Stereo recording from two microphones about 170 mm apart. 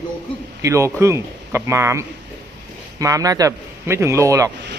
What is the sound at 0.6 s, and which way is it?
A man's voice, 15° right (ahead or behind).